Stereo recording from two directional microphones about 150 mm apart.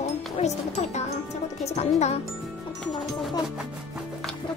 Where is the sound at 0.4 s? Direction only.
50° left (ahead or behind).